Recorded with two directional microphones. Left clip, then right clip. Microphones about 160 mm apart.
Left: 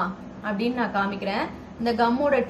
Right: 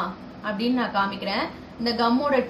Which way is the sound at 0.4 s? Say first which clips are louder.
Right 1 dB; 15° left (ahead or behind).